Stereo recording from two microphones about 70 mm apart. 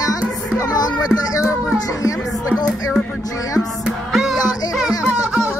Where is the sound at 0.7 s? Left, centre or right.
Left.